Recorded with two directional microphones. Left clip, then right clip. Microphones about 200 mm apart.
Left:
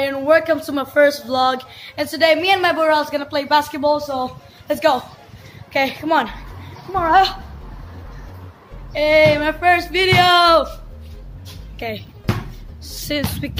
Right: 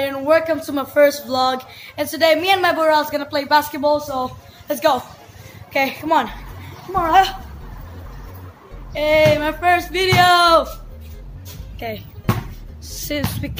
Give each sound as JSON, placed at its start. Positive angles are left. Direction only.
{"t": 0.0, "sound": "a woman's voice", "side_deg": 5}
{"t": 7.0, "sound": "speech", "side_deg": 15}
{"t": 8.9, "sound": "speech", "side_deg": 10}
{"t": 11.8, "sound": "speech", "side_deg": 10}
{"t": 13.1, "sound": "speech", "side_deg": 10}